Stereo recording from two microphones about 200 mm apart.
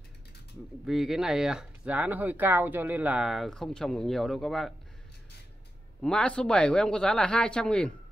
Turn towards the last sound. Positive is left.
turn(degrees=5)  # may be behind; listen again after turning